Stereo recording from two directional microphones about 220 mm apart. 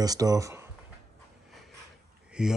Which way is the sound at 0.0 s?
15° right (ahead or behind).